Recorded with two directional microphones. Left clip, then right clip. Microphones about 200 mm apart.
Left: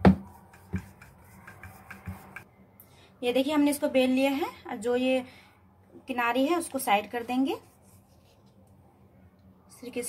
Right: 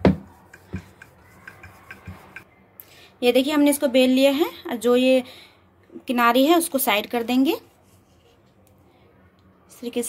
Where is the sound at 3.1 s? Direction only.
45° right (ahead or behind).